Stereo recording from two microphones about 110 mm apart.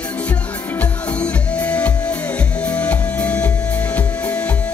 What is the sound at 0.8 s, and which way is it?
Music, 10° left (ahead or behind).